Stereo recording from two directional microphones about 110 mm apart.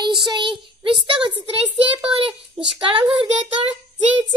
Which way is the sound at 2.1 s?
55° right (ahead or behind).